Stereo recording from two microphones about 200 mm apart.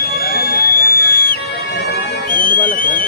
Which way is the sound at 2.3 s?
45° left (ahead or behind).